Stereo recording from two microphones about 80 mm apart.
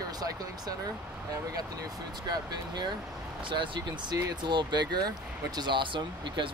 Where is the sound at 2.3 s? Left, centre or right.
Right.